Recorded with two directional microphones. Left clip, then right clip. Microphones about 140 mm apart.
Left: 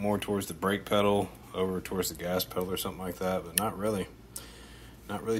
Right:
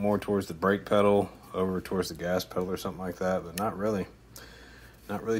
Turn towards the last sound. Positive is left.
turn(degrees=-15)  # may be behind; listen again after turning